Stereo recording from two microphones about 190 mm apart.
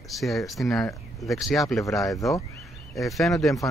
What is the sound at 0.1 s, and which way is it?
Speech, centre (ahead or behind).